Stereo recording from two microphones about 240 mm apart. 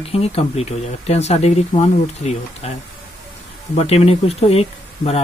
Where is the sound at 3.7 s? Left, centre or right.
Left.